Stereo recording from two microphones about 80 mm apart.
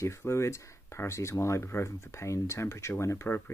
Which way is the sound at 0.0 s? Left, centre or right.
Left.